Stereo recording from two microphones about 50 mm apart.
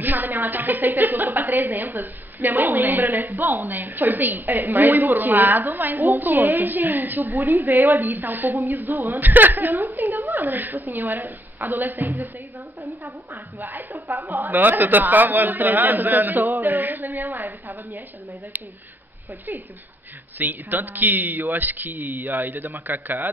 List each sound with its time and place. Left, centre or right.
0.0 s a woman's voice: right
13.3 s a woman's voice: right
13.9 s a woman's voice: right
14.3 s a woman's voice: right
20.3 s a woman's voice: right